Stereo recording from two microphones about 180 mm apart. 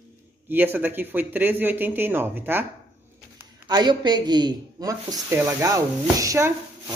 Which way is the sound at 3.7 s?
25° right (ahead or behind).